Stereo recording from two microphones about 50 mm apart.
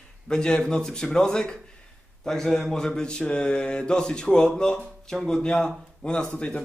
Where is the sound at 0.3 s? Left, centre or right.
Centre.